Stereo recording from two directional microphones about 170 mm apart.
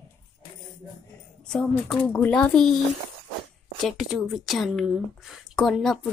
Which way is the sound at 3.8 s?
Centre (ahead or behind).